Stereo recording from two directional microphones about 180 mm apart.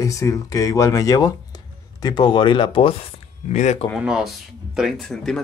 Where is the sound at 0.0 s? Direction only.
20° left (ahead or behind); by 3.8 s 40° left (ahead or behind).